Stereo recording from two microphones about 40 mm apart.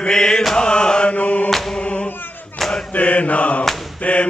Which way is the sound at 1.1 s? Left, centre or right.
Left.